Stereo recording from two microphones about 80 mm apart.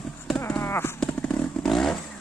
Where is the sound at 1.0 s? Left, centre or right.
Centre.